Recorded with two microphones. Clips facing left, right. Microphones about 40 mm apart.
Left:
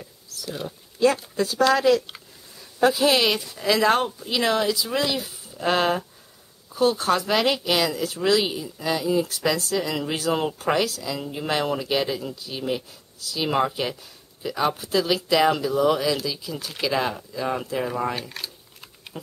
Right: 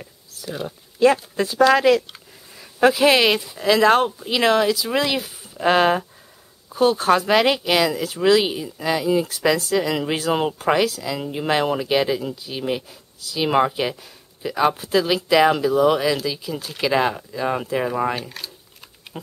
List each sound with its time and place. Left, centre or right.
0.5 s speech: centre
0.9 s speech: right
3.3 s speech: centre
3.8 s speech: right
8.2 s speech: centre
11.0 s speech: centre
18.4 s speech: centre
19.1 s speech: right